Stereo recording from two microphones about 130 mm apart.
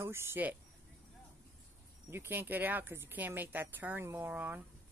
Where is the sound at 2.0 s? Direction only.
15° right (ahead or behind).